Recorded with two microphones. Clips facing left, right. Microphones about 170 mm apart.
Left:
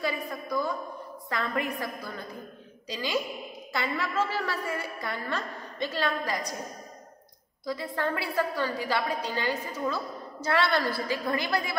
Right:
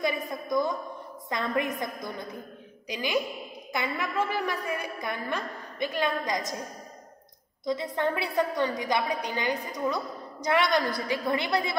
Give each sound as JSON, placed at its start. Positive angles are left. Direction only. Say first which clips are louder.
{"t": 0.0, "sound": "a woman's voice", "louder": "right 2 dB", "side_deg": -20}
{"t": 7.6, "sound": "a woman's voice", "louder": "right 3 dB", "side_deg": -20}